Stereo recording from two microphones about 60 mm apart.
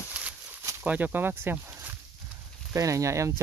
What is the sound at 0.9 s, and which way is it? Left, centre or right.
Speech, right.